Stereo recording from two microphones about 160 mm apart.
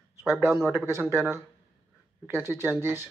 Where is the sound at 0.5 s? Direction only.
10° right (ahead or behind).